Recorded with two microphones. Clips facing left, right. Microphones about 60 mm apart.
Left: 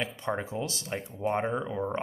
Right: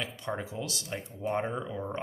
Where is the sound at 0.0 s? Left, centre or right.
Left.